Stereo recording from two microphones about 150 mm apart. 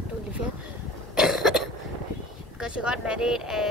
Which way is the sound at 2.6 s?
5° right (ahead or behind).